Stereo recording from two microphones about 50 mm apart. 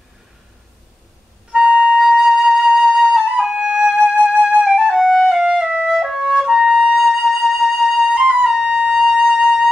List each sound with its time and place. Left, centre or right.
1.6 s flute: centre
2.0 s flute: centre
5.0 s flute: centre
5.4 s music: centre
6.9 s flute: centre